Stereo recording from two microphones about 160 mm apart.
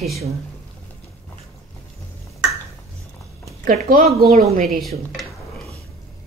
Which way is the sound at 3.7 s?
55° right (ahead or behind).